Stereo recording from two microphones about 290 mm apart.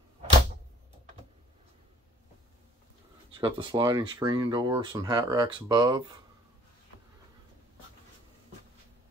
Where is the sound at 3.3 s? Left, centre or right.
Centre.